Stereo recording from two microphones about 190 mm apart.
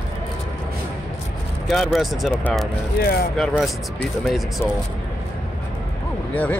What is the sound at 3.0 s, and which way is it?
Speech, 55° left (ahead or behind).